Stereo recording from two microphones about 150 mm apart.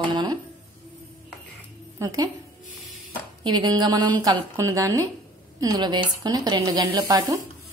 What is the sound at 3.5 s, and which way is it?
Speech, 30° right (ahead or behind).